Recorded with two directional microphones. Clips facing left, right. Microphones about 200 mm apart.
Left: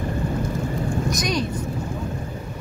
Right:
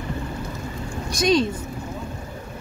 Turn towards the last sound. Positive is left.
turn(degrees=-25)  # may be behind; listen again after turning